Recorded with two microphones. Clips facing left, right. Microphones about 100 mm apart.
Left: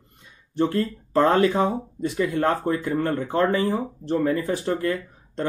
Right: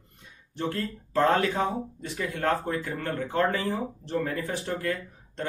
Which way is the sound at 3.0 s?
35° left (ahead or behind).